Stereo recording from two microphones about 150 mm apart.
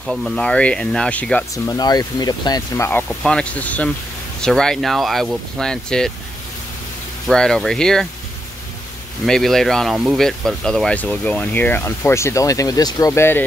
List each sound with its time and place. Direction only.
0.0 s speech: centre (ahead or behind)
1.5 s speech: 25° left (ahead or behind)
3.2 s speech: 5° left (ahead or behind)
7.2 s speech: 5° left (ahead or behind)
9.2 s speech: centre (ahead or behind)
10.2 s speech: 5° left (ahead or behind)